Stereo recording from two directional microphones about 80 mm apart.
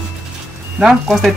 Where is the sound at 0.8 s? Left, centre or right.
Centre.